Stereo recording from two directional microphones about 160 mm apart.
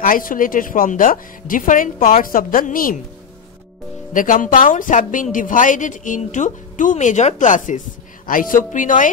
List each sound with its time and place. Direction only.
0.0 s a woman's voice: 60° left (ahead or behind)
4.1 s a woman's voice: 55° left (ahead or behind)